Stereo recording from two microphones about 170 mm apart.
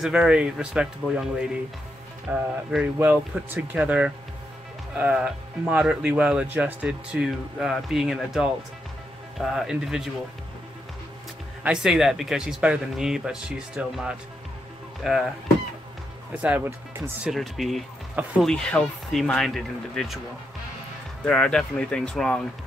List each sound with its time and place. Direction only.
0.0 s speech: 5° right (ahead or behind)
2.2 s speech: 5° right (ahead or behind)
11.6 s speech: 5° right (ahead or behind)
16.3 s speech: 10° right (ahead or behind)
17.3 s speech: centre (ahead or behind)
21.3 s speech: 5° left (ahead or behind)